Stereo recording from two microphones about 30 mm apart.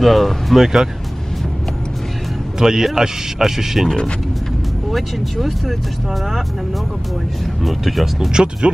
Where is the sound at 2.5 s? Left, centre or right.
Centre.